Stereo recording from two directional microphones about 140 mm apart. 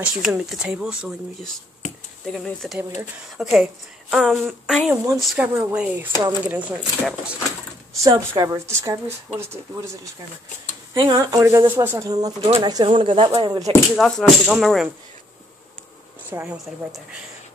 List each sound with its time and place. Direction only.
0.0 s speech: 5° right (ahead or behind)
5.4 s speech: 15° right (ahead or behind)
7.9 s speech: 25° right (ahead or behind)
12.4 s speech: 40° right (ahead or behind)
13.9 s speech: 5° left (ahead or behind)
16.3 s speech: 15° right (ahead or behind)